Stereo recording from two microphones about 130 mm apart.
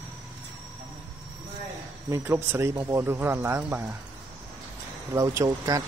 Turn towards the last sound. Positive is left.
turn(degrees=-25)  # may be behind; listen again after turning